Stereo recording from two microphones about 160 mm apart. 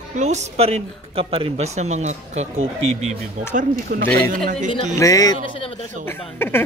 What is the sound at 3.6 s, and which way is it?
Speech, 70° right (ahead or behind).